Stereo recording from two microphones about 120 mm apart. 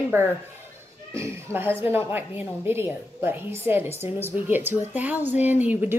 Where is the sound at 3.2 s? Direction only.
20° right (ahead or behind).